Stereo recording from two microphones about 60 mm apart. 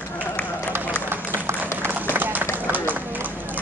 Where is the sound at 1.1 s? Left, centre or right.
Right.